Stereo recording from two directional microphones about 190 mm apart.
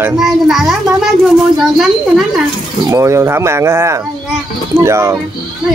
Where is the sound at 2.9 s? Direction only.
15° right (ahead or behind).